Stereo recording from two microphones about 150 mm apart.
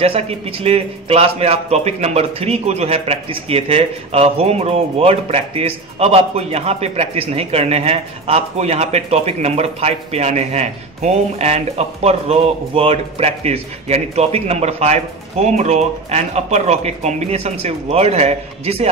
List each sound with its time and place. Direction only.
0.0 s a man's voice: 40° right (ahead or behind)